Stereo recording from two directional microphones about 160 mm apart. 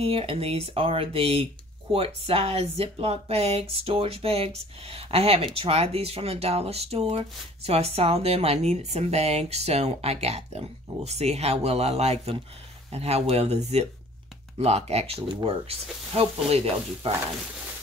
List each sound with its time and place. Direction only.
0.0 s speech: 35° right (ahead or behind)